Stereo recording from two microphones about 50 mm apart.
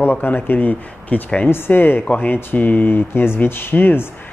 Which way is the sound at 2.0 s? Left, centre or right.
Left.